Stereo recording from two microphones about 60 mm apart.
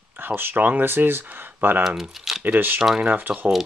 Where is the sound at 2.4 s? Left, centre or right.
Right.